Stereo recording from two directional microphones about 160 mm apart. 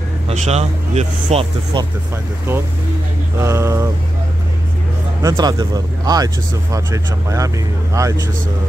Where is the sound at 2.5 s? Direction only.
15° right (ahead or behind).